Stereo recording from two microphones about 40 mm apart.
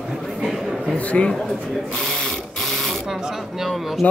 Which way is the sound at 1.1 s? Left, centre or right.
Left.